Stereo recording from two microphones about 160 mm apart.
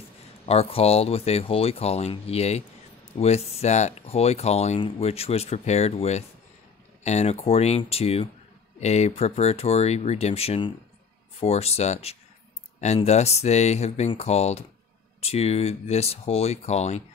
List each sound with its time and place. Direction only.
0.5 s speech: 40° left (ahead or behind)